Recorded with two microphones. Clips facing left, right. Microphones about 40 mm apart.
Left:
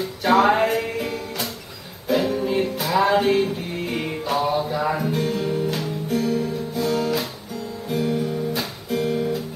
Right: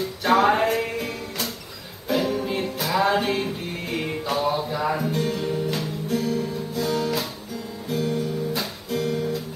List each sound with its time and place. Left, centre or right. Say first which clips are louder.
0.0 s music: left 2 dB; centre
6.7 s guitar: left 2 dB; centre